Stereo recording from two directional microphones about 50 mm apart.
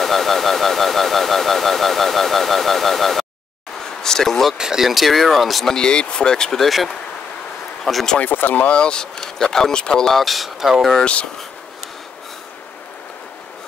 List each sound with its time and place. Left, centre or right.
0.0 s a sound: centre
4.0 s speech: centre
4.6 s speech: centre
5.8 s speech: centre
6.6 s speech: centre
8.3 s speech: left
8.6 s speech: left
10.0 s speech: centre